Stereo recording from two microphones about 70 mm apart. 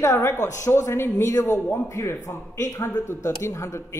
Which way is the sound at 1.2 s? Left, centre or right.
Left.